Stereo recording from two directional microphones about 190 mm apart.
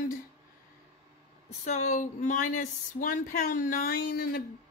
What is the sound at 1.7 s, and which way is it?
A woman's voice, 40° left (ahead or behind).